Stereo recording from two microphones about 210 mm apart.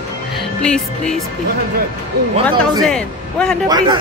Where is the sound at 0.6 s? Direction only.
5° left (ahead or behind).